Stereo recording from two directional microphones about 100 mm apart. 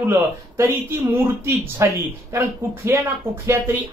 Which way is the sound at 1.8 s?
30° right (ahead or behind).